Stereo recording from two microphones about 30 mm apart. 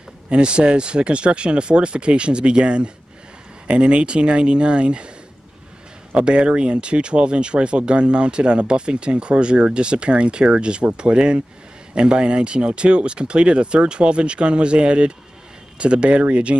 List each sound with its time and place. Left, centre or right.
0.3 s speech: right
6.1 s speech: right